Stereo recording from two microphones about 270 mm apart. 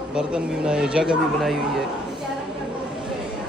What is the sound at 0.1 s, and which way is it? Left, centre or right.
Speech, centre.